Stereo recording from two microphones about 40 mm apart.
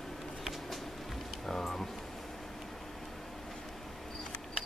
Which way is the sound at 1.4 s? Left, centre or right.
Centre.